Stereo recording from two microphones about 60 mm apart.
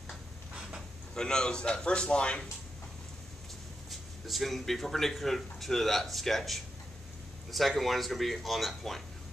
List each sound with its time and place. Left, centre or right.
0.6 s a sound: centre
1.1 s a man's voice: centre
3.9 s speech: centre